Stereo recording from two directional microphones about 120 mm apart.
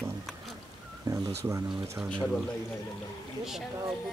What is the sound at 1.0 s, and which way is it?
Speech, 25° right (ahead or behind).